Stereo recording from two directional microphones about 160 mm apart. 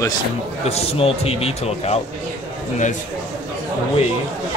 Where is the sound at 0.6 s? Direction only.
40° left (ahead or behind).